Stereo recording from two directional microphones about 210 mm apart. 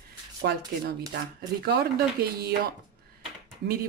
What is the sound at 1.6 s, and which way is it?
Speech, 50° right (ahead or behind).